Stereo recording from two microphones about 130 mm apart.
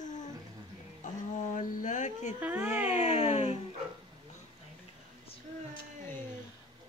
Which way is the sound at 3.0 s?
55° left (ahead or behind).